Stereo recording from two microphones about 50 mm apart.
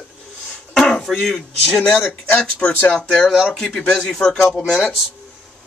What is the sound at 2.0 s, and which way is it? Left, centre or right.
Speech, left.